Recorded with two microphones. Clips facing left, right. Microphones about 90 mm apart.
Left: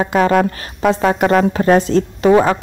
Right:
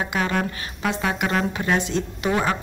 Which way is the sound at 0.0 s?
40° left (ahead or behind).